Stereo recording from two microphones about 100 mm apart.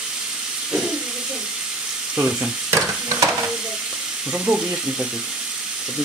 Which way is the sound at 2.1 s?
15° right (ahead or behind).